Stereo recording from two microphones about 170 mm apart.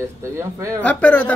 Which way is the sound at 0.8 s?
10° left (ahead or behind).